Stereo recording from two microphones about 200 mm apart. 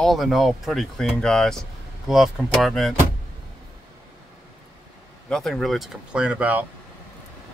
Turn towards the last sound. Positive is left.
turn(degrees=-5)  # may be behind; listen again after turning